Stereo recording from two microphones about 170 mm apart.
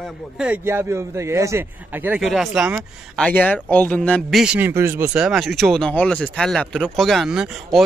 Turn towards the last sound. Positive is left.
turn(degrees=-5)  # may be behind; listen again after turning